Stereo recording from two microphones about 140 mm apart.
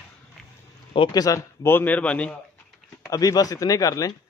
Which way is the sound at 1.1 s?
25° left (ahead or behind).